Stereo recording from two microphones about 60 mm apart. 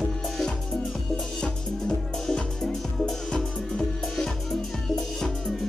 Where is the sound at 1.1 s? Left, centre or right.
Centre.